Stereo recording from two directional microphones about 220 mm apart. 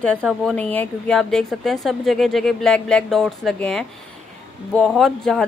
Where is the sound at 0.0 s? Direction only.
5° left (ahead or behind).